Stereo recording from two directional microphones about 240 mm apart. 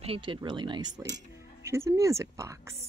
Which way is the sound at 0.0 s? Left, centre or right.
Right.